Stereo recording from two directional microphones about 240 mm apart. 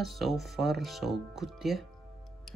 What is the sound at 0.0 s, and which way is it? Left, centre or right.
Speech, centre.